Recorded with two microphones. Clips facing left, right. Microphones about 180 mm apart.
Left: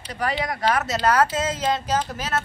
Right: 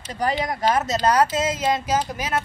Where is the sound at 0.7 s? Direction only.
25° right (ahead or behind).